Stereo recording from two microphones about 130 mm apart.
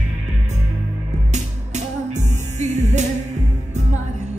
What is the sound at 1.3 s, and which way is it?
Music, 65° right (ahead or behind).